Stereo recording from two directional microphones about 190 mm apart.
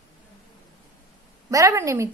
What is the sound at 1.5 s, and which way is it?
Speech, 15° right (ahead or behind).